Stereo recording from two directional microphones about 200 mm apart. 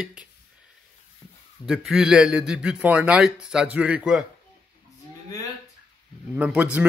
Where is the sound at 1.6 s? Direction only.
5° right (ahead or behind).